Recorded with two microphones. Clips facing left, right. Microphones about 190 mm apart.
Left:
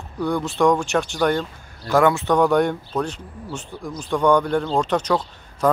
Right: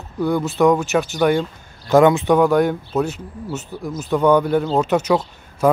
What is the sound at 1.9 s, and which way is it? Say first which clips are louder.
Speech: right 4 dB; 20° right (ahead or behind).